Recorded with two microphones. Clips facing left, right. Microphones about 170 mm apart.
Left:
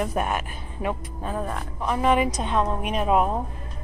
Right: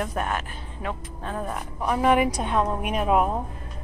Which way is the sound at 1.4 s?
5° right (ahead or behind).